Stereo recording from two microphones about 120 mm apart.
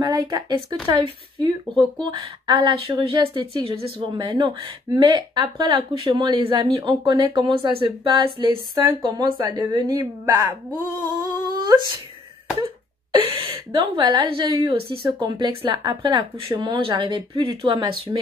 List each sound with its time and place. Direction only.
0.0 s speech: 35° right (ahead or behind)
11.1 s humming: 35° right (ahead or behind)
13.1 s speech: 50° right (ahead or behind)